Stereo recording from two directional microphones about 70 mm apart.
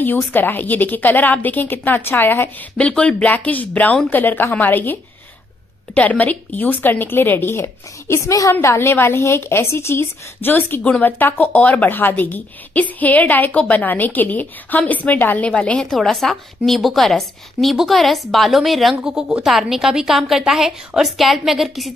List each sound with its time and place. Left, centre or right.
0.3 s a woman's voice: left
2.8 s a woman's voice: centre
5.9 s a woman's voice: left
8.3 s a woman's voice: left
8.6 s a woman's voice: left
10.8 s speech: centre
11.1 s a woman's voice: left; by 21.9 s centre